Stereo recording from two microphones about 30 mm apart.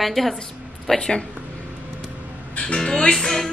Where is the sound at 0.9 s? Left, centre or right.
Left.